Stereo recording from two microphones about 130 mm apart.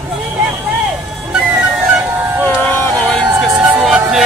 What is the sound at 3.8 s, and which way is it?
Music, 5° right (ahead or behind).